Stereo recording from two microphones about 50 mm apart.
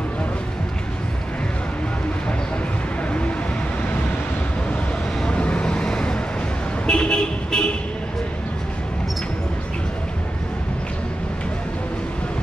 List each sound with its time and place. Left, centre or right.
5.2 s vehicle: left